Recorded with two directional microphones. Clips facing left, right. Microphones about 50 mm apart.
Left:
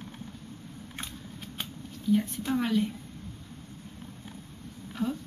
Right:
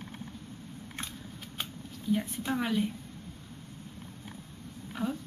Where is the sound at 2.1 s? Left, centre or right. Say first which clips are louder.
Left 4 dB; centre.